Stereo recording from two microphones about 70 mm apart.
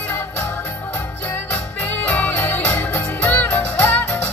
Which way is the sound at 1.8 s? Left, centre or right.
Left.